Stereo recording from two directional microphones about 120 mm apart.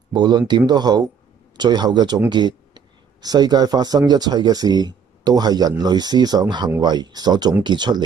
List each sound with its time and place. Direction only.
0.1 s speech: 35° right (ahead or behind)